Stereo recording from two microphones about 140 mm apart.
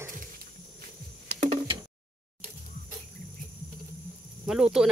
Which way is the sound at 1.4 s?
45° right (ahead or behind).